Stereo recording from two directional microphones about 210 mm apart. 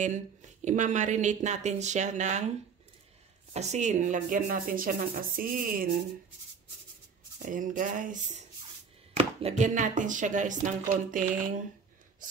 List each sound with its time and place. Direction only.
0.7 s speech: 35° right (ahead or behind)
3.5 s speech: 30° right (ahead or behind)
7.3 s speech: 40° right (ahead or behind)